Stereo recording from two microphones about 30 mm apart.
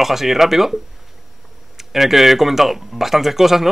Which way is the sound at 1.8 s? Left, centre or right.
Centre.